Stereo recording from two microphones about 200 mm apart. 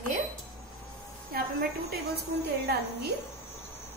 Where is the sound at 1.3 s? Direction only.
50° right (ahead or behind).